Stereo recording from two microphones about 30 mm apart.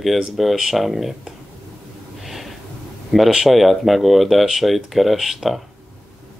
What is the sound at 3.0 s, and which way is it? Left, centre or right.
Speech, centre.